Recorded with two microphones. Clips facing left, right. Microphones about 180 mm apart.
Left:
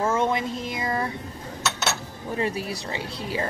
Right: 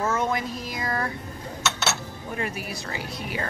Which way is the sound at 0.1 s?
25° left (ahead or behind).